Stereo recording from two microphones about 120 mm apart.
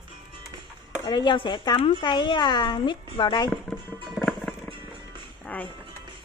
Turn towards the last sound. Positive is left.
turn(degrees=15)  # may be behind; listen again after turning